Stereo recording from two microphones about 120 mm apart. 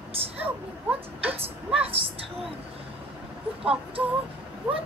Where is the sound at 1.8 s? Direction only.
50° right (ahead or behind).